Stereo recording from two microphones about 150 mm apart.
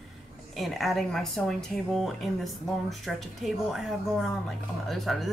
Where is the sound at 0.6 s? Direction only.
Centre (ahead or behind).